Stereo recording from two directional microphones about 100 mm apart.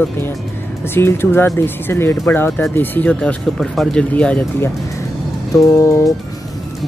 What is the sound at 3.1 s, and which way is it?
Speech, 10° left (ahead or behind).